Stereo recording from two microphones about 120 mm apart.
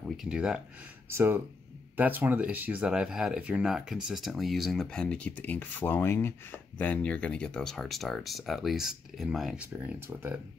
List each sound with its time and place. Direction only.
0.0 s speech: 5° right (ahead or behind)
1.1 s speech: 20° right (ahead or behind)
9.7 s speech: 20° right (ahead or behind)